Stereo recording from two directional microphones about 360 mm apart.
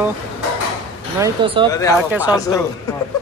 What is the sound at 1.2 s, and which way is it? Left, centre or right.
Speech, centre.